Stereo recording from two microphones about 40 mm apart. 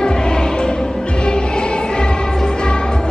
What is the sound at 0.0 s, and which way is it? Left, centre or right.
Music, centre.